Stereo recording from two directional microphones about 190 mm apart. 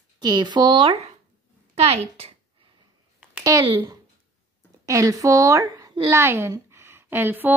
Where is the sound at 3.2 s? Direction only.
15° right (ahead or behind).